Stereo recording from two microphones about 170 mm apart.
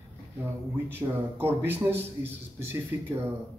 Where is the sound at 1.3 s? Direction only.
10° right (ahead or behind).